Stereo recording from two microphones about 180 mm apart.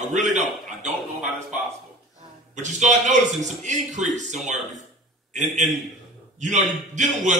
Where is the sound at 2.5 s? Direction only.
40° right (ahead or behind).